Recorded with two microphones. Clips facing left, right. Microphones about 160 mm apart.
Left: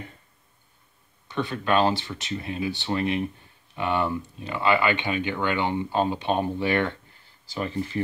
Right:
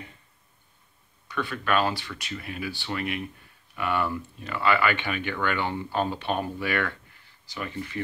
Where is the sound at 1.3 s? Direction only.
25° left (ahead or behind).